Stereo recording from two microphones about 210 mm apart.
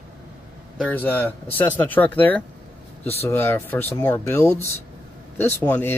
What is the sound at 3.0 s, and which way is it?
Speech, 30° left (ahead or behind).